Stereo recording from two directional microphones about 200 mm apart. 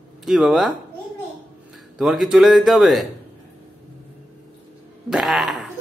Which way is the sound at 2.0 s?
Centre (ahead or behind).